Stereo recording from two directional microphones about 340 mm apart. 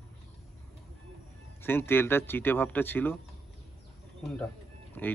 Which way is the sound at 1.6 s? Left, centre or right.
Centre.